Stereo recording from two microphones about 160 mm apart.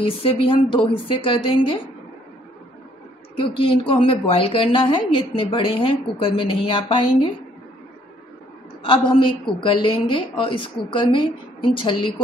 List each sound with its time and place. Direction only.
0.0 s a woman's voice: 35° left (ahead or behind)
3.3 s a woman's voice: 35° left (ahead or behind)
8.8 s a woman's voice: 35° left (ahead or behind)